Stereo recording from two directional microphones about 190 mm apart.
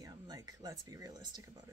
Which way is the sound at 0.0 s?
20° right (ahead or behind).